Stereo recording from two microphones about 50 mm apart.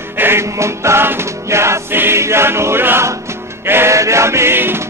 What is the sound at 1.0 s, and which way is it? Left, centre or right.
Music, right.